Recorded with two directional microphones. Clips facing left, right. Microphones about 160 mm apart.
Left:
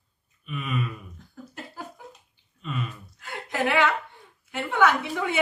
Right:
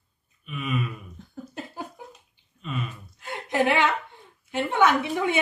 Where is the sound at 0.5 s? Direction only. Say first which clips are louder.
Right 1 dB; centre (ahead or behind).